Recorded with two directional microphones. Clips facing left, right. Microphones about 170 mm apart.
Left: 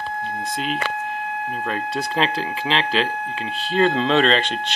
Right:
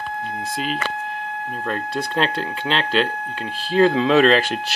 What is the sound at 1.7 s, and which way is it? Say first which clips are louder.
Speech: right 2 dB; centre (ahead or behind).